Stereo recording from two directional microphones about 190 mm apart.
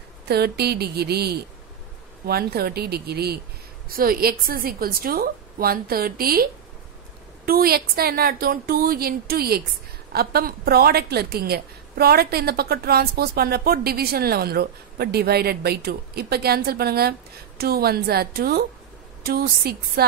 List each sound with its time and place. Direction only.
0.3 s a woman's voice: 55° right (ahead or behind)